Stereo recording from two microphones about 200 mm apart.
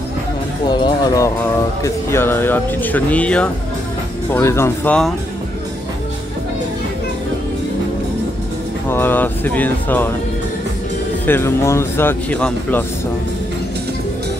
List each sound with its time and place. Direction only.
0.7 s speech: 20° left (ahead or behind); by 5.1 s 5° left (ahead or behind)
8.9 s speech: 10° left (ahead or behind)
11.2 s speech: 10° left (ahead or behind)